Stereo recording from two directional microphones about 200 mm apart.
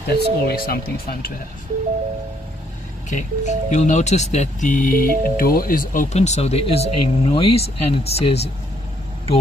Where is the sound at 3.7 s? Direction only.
35° left (ahead or behind).